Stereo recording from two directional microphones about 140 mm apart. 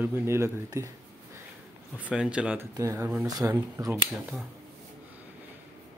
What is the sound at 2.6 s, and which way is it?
Speech, 20° right (ahead or behind).